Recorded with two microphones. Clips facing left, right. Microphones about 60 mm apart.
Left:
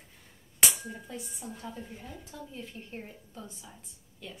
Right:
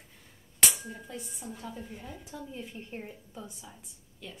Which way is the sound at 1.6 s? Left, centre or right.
Centre.